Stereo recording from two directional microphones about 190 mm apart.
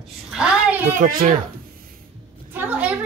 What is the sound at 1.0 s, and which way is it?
Speech, 45° right (ahead or behind).